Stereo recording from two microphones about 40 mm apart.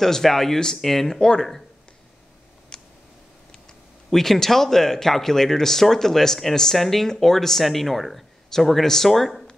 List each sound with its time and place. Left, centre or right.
0.0 s speech: centre
2.7 s a sound: centre
4.1 s speech: centre